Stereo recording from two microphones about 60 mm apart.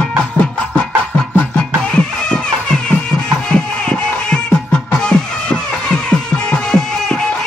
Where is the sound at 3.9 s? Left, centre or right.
Centre.